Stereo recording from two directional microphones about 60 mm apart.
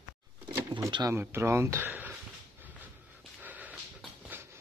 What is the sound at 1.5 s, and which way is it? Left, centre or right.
Speech, right.